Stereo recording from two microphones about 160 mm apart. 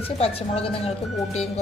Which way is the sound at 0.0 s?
35° left (ahead or behind).